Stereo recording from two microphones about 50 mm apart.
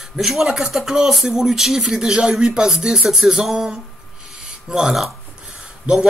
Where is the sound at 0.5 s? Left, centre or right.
Centre.